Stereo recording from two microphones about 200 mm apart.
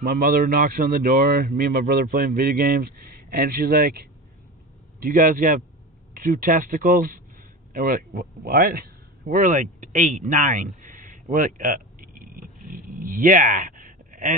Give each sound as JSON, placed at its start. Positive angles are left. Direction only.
{"t": 0.0, "sound": "a man's voice", "side_deg": -45}
{"t": 5.0, "sound": "a man's voice", "side_deg": -45}
{"t": 7.7, "sound": "a sound", "side_deg": -45}